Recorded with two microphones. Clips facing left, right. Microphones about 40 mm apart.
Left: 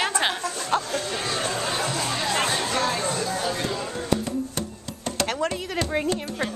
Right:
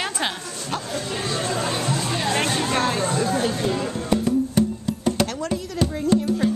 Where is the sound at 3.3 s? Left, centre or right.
Right.